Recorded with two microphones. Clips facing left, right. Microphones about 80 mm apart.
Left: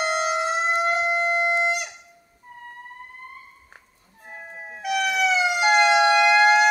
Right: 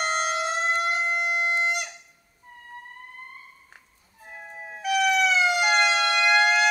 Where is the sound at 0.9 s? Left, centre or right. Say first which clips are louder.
Left 4 dB; centre.